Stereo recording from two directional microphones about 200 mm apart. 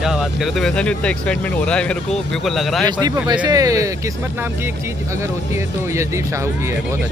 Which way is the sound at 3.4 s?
15° right (ahead or behind).